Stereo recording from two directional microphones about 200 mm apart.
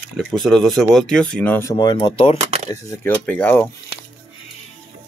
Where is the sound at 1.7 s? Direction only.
25° left (ahead or behind).